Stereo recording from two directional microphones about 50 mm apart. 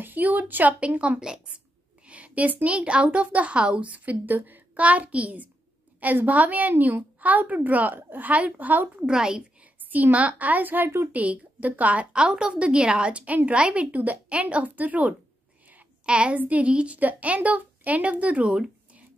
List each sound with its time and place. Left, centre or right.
0.0 s a woman's voice: right
9.0 s a woman's voice: centre
9.6 s a woman's voice: right